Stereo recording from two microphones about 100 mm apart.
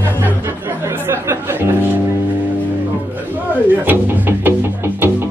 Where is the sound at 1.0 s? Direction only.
25° right (ahead or behind).